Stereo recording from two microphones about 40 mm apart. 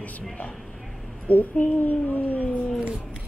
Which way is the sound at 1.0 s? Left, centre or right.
Centre.